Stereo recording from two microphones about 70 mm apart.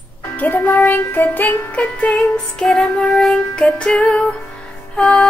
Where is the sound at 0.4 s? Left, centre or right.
Left.